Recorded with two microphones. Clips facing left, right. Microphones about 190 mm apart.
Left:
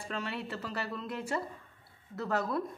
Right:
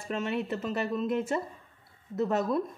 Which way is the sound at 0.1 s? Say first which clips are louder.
Right 7 dB; 20° right (ahead or behind).